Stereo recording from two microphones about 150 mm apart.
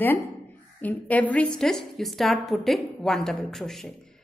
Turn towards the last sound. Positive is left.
turn(degrees=0)  # may be behind; listen again after turning